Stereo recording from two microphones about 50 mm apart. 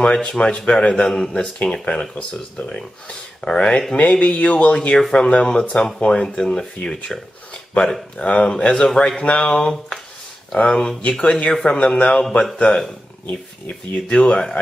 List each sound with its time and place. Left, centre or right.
0.0 s speech: centre
4.7 s speech: centre
8.8 s speech: centre
9.2 s speech: left
9.5 s speech: centre